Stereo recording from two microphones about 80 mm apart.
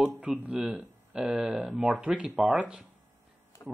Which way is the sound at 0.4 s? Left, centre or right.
Centre.